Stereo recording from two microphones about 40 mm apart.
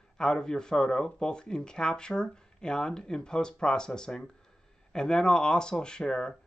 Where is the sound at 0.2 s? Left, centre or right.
Centre.